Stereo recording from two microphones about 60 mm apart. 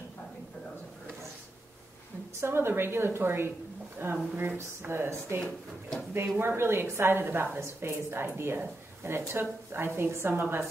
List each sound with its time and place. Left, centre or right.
2.4 s a woman's voice: right